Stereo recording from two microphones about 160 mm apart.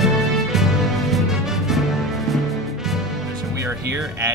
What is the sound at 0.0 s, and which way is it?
Music, centre (ahead or behind).